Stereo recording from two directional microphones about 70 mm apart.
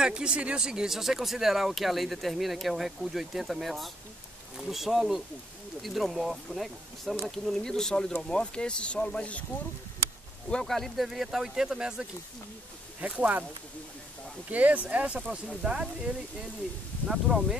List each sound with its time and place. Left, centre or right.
0.0 s speech: centre
10.5 s speech: centre
13.0 s speech: right
14.5 s speech: right
15.6 s speech: centre
17.1 s speech: centre